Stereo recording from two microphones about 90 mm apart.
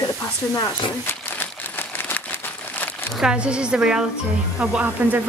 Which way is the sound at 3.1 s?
10° right (ahead or behind).